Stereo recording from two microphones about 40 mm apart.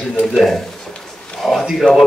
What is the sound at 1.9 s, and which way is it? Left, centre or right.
Speech, left.